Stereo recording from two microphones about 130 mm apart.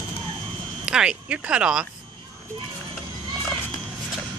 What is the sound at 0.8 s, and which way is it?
Speech, 5° right (ahead or behind).